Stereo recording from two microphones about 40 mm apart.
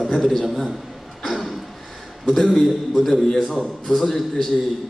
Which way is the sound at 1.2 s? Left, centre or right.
Centre.